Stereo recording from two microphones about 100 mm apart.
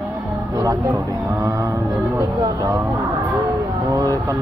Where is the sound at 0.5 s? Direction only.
35° right (ahead or behind).